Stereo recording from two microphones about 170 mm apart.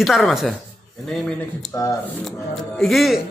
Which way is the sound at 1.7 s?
20° left (ahead or behind).